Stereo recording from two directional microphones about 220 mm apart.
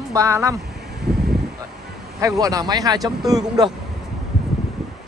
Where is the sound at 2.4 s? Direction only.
15° right (ahead or behind).